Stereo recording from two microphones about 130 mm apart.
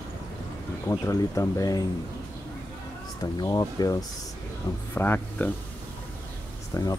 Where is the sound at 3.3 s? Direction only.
30° left (ahead or behind).